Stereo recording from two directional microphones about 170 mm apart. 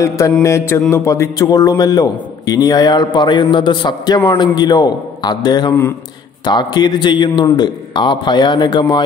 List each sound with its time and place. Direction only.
0.4 s a man's voice: 15° left (ahead or behind)